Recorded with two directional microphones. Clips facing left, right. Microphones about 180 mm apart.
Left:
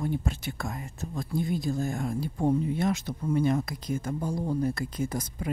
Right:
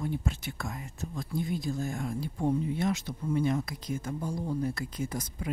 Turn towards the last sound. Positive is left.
turn(degrees=45)  # may be behind; listen again after turning